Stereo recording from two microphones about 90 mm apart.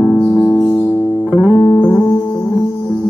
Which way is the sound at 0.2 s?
15° left (ahead or behind).